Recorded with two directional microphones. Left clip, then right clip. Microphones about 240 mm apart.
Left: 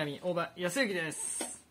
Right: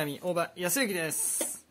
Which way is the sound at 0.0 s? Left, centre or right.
Right.